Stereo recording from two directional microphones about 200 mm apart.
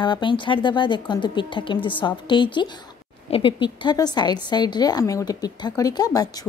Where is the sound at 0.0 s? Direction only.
25° left (ahead or behind).